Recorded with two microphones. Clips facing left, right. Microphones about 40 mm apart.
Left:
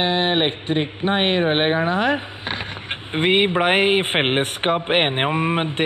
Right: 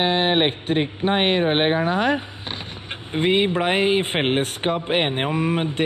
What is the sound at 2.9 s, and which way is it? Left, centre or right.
A man's voice, left.